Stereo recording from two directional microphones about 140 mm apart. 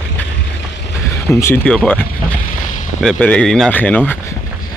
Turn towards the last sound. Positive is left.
turn(degrees=15)  # may be behind; listen again after turning